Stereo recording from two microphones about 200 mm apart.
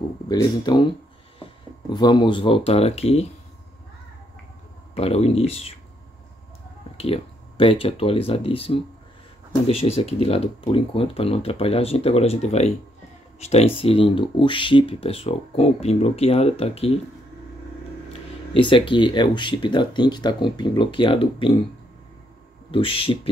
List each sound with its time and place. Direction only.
0.3 s speech: 20° left (ahead or behind)
4.9 s speech: 30° left (ahead or behind)
7.0 s speech: 25° left (ahead or behind)
18.5 s speech: 25° left (ahead or behind)
22.7 s speech: 25° left (ahead or behind)